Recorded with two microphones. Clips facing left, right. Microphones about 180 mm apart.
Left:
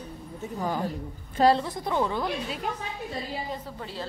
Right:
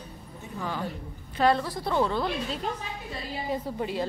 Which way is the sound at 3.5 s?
15° right (ahead or behind).